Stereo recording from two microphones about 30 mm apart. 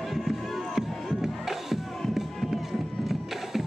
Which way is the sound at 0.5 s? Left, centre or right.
Centre.